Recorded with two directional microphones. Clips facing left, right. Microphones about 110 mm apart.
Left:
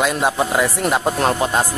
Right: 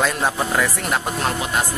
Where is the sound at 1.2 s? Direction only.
35° left (ahead or behind).